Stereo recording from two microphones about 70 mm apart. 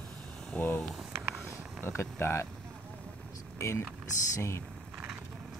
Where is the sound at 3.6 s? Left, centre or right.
Left.